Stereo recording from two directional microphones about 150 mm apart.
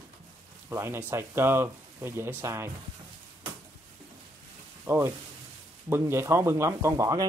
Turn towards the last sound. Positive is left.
turn(degrees=-25)  # may be behind; listen again after turning